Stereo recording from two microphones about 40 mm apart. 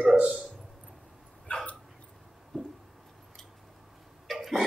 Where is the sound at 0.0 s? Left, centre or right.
Right.